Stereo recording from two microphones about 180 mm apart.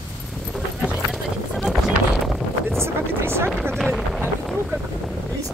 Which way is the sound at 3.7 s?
Centre (ahead or behind).